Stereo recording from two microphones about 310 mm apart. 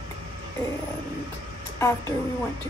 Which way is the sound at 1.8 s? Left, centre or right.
Centre.